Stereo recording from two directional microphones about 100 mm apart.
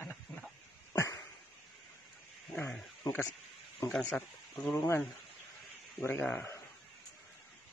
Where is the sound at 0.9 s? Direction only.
30° left (ahead or behind).